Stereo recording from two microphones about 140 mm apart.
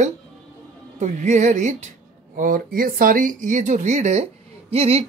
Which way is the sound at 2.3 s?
80° right.